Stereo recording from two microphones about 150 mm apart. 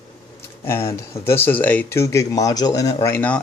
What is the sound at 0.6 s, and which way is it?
Speech, 15° left (ahead or behind).